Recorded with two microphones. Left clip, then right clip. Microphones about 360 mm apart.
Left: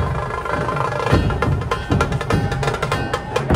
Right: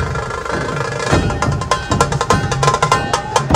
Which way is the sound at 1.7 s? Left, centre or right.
Centre.